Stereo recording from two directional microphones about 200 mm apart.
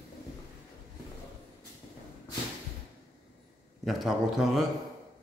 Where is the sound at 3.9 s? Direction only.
Centre (ahead or behind).